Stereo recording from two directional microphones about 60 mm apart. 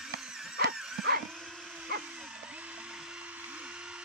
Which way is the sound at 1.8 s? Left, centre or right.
Centre.